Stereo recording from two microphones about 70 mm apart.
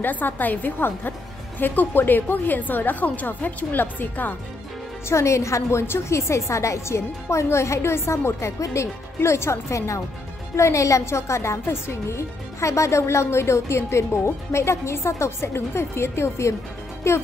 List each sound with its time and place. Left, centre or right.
0.0 s a woman's voice: left
5.0 s a woman's voice: left